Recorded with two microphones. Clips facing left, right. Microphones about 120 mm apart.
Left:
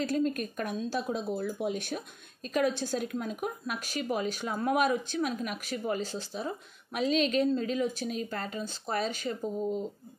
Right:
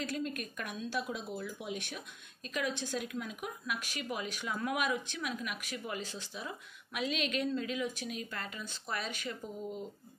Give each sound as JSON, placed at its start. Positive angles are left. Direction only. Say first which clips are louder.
{"t": 0.0, "sound": "speech", "louder": "left 8 dB", "side_deg": 35}